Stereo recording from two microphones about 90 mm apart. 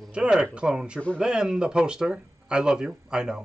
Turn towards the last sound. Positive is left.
turn(degrees=-10)  # may be behind; listen again after turning